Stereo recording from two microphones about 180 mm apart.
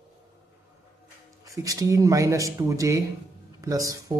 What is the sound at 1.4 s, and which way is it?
Speech, 20° right (ahead or behind).